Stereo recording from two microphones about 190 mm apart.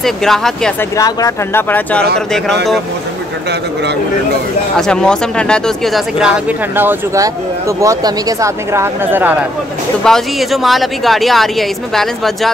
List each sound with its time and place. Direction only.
0.0 s a woman's voice: centre (ahead or behind)
0.9 s a woman's voice: 15° left (ahead or behind); by 2.8 s centre (ahead or behind)
4.7 s speech: 5° left (ahead or behind)
10.0 s a woman's voice: centre (ahead or behind)